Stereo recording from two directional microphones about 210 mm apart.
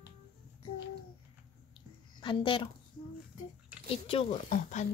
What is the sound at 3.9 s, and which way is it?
Speech, 25° left (ahead or behind).